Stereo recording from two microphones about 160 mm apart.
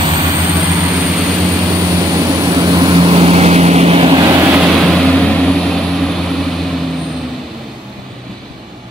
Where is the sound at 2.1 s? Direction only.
20° right (ahead or behind).